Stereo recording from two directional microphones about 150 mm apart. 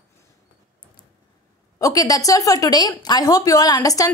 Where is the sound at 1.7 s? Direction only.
20° left (ahead or behind).